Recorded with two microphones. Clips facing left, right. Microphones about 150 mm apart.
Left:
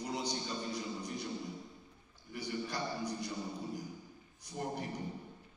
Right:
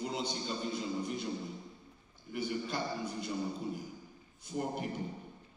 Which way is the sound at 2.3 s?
25° right (ahead or behind).